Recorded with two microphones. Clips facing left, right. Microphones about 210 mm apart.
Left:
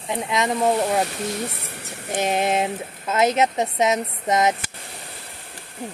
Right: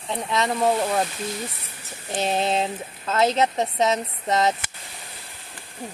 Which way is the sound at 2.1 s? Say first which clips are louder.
Left 2 dB; 15° left (ahead or behind).